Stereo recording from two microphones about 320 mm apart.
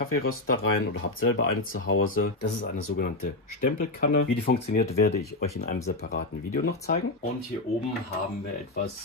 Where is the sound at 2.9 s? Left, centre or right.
Left.